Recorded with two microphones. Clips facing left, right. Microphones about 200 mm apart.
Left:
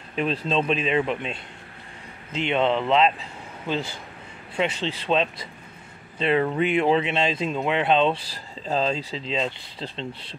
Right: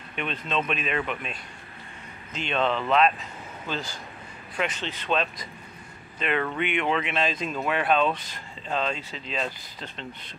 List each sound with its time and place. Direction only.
0.1 s a man's voice: 35° left (ahead or behind)